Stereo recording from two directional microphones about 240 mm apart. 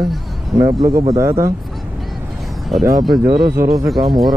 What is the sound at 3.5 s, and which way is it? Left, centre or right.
Speech, centre.